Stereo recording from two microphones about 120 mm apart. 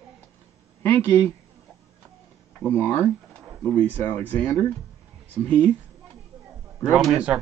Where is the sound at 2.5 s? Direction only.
20° left (ahead or behind).